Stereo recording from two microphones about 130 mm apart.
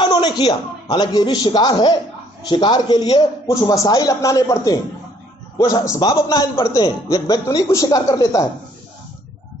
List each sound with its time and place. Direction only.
0.0 s a man's voice: 40° left (ahead or behind)